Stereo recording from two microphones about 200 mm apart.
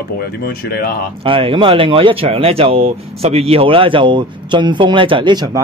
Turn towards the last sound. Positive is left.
turn(degrees=-20)  # may be behind; listen again after turning